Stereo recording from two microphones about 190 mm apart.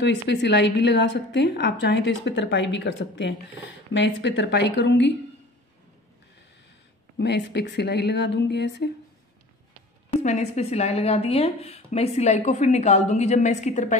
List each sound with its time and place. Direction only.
0.0 s a woman's voice: 65° left (ahead or behind)
7.2 s a woman's voice: 65° left (ahead or behind)
10.1 s a woman's voice: 35° left (ahead or behind)